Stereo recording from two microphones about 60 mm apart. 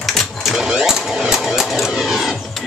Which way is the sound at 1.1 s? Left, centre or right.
Centre.